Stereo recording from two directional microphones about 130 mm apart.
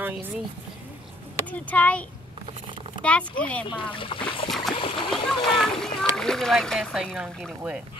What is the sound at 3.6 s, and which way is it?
Speech, 40° left (ahead or behind).